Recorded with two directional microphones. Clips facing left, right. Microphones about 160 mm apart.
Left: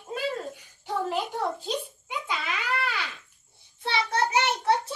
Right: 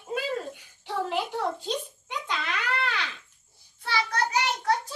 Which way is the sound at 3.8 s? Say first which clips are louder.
Left 2 dB; 25° left (ahead or behind).